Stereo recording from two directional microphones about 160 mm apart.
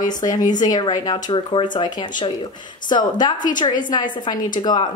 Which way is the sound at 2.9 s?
25° left (ahead or behind).